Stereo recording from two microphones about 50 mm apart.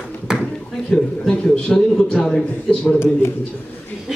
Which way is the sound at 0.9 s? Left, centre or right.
Centre.